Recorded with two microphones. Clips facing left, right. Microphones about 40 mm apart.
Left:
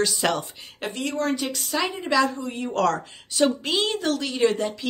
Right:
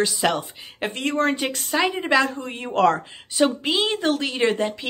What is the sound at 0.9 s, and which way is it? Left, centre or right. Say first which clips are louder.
A woman's voice: right 3 dB; right.